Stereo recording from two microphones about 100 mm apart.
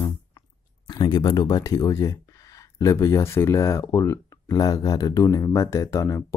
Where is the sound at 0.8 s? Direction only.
50° left (ahead or behind).